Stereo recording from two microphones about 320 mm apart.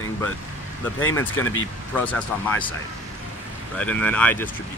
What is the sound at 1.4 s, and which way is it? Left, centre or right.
Speech, left.